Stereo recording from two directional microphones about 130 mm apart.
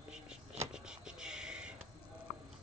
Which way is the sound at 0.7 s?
5° right (ahead or behind).